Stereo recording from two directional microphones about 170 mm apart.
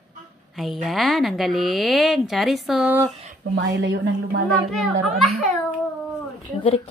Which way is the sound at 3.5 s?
90° right.